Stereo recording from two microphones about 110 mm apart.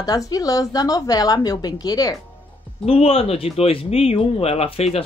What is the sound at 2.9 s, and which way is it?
Speech, 60° left (ahead or behind).